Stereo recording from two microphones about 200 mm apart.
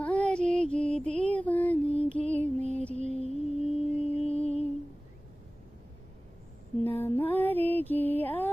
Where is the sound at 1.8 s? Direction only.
30° left (ahead or behind).